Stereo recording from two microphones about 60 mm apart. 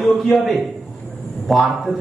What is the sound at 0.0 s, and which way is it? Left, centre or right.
A man's voice, centre.